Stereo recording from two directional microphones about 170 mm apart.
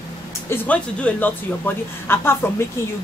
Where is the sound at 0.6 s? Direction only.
10° left (ahead or behind).